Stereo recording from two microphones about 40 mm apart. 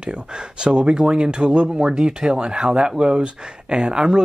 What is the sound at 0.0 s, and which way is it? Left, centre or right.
Speech, right.